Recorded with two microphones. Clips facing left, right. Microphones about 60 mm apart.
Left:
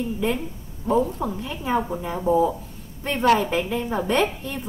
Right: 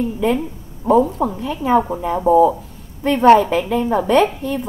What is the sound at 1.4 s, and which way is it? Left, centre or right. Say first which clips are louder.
Speech: right 9 dB; right.